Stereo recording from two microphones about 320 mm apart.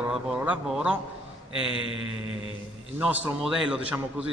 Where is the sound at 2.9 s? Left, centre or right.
Centre.